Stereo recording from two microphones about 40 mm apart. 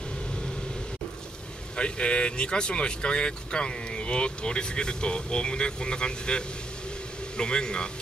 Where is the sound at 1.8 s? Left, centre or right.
Left.